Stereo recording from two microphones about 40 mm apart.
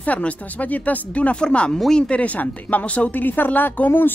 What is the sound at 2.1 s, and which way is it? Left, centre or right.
Speech, left.